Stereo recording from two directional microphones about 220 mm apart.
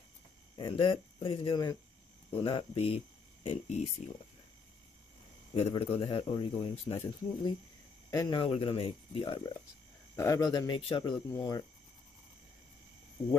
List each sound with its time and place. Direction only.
0.6 s speech: 25° left (ahead or behind)
5.5 s speech: 25° left (ahead or behind)
10.1 s speech: 15° left (ahead or behind)